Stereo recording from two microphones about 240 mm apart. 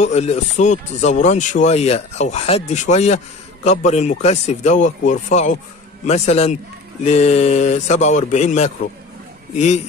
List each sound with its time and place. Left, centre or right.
0.0 s speech: left